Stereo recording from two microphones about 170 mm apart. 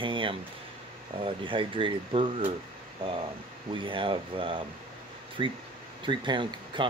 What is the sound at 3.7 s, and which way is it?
Speech, 30° right (ahead or behind).